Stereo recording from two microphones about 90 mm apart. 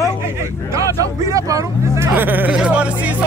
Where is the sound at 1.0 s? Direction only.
40° right (ahead or behind).